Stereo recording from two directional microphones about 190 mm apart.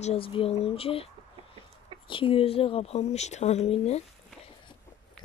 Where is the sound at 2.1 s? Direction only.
30° left (ahead or behind).